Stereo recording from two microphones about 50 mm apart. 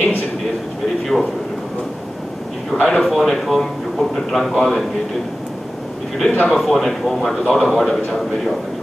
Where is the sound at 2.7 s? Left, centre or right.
Centre.